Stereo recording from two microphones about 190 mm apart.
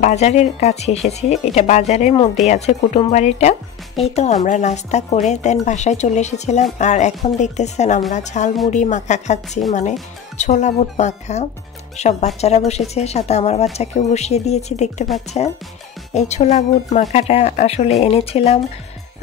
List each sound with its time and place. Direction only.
0.0 s speech: 35° left (ahead or behind)